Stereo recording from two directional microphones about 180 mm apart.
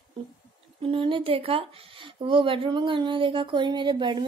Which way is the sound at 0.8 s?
30° right (ahead or behind).